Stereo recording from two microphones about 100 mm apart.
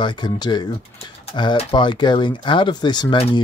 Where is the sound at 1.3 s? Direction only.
55° left (ahead or behind).